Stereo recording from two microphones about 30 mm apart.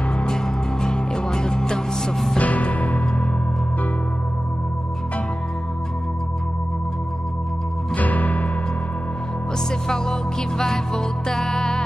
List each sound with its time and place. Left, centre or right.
0.2 s music: left
2.3 s music: left
7.9 s music: left
9.8 s music: centre